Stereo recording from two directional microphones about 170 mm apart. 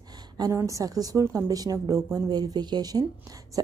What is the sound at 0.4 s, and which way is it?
Speech, 15° right (ahead or behind).